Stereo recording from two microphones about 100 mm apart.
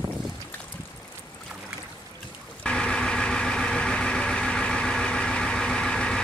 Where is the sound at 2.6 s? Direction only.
10° left (ahead or behind).